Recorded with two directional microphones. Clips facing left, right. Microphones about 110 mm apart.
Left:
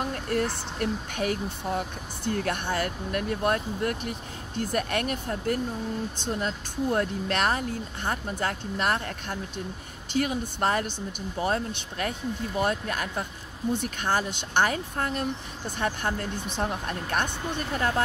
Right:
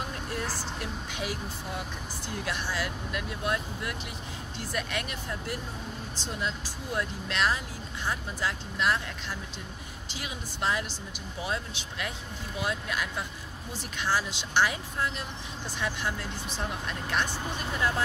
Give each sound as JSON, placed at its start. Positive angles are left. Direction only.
{"t": 0.3, "sound": "speech", "side_deg": 55}